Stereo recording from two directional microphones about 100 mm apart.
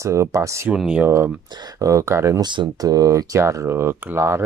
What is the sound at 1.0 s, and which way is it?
Speech, 25° right (ahead or behind).